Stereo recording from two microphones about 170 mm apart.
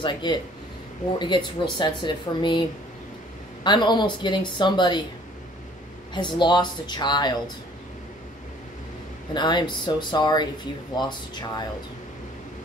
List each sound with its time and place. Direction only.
0.0 s speech: 25° left (ahead or behind)
3.6 s speech: 25° left (ahead or behind)
6.1 s speech: 25° left (ahead or behind)
9.3 s speech: 25° left (ahead or behind)